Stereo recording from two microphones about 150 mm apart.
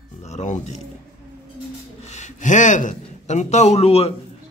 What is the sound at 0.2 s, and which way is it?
Music, 50° left (ahead or behind).